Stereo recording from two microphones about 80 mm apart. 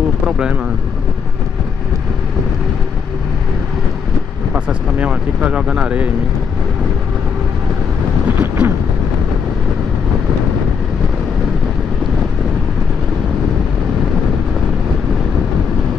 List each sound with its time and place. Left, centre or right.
4.6 s speech: centre
8.4 s vehicle: right